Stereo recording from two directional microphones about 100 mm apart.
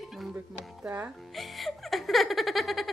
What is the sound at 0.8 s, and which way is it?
Speech, 15° right (ahead or behind).